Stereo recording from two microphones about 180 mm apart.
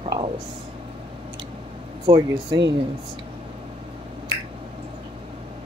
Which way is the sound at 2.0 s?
25° right (ahead or behind).